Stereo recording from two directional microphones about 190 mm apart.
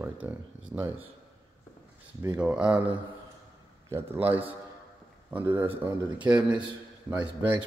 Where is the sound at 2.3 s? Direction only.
5° right (ahead or behind).